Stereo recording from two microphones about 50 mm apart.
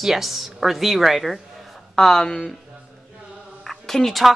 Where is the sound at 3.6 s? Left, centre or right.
Centre.